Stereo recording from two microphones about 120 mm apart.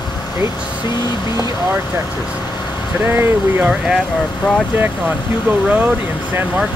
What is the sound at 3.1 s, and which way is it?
Speech, 20° right (ahead or behind).